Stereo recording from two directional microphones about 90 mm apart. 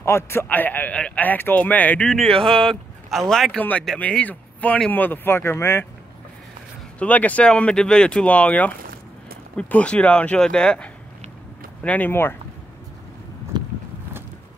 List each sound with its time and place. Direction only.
0.0 s a man's voice: 30° left (ahead or behind)
2.0 s speech: 5° left (ahead or behind)
4.0 s a man's voice: 15° left (ahead or behind)
7.0 s speech: 15° left (ahead or behind)
12.1 s a man's voice: 25° left (ahead or behind)
13.5 s a sound: 55° right (ahead or behind)